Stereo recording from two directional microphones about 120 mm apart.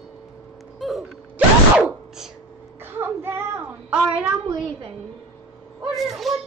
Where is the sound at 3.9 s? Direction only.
10° right (ahead or behind).